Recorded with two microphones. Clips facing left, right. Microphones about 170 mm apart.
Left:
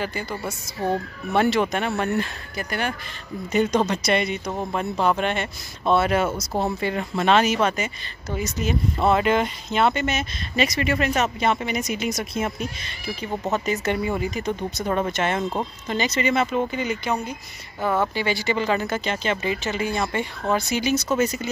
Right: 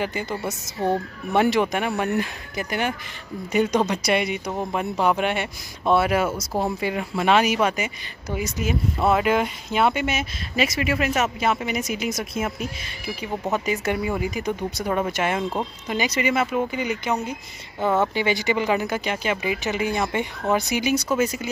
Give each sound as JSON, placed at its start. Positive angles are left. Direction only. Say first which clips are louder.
{"t": 0.0, "sound": "speech", "louder": "right 2 dB", "side_deg": -20}